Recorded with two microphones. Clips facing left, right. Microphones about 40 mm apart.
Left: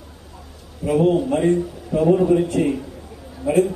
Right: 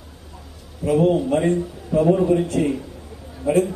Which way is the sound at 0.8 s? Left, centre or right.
Centre.